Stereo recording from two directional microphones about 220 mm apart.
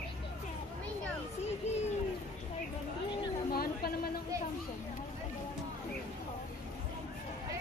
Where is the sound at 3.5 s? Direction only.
45° left (ahead or behind).